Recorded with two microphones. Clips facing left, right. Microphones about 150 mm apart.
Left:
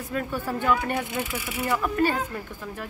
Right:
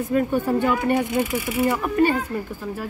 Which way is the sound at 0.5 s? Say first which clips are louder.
Right 5 dB; 15° right (ahead or behind).